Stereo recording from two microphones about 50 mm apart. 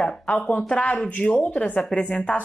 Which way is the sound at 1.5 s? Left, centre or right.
Left.